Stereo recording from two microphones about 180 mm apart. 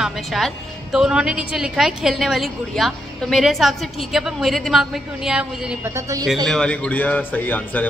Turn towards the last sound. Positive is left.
turn(degrees=10)  # may be behind; listen again after turning